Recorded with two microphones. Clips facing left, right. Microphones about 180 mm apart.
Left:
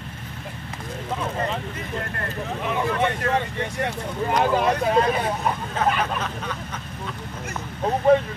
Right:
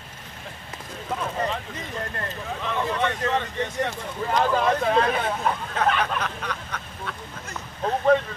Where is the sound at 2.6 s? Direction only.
15° left (ahead or behind).